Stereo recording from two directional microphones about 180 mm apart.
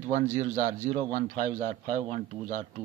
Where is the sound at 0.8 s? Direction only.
50° right (ahead or behind).